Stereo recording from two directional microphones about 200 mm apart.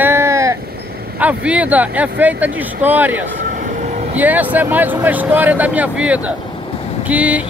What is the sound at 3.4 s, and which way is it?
Vehicle, 35° right (ahead or behind).